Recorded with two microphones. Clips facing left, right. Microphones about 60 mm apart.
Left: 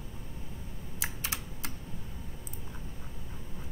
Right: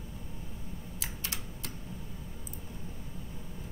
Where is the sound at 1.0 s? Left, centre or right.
Centre.